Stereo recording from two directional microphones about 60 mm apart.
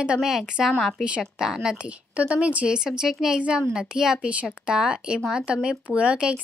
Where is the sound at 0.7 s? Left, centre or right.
Centre.